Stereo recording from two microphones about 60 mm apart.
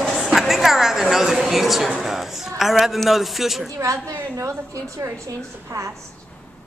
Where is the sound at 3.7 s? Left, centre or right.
Right.